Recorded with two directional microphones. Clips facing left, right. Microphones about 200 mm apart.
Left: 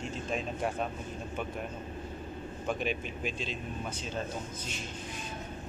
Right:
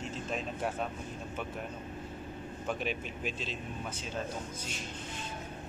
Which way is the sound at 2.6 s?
Centre (ahead or behind).